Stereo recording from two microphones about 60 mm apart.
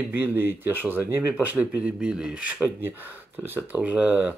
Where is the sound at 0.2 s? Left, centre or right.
Right.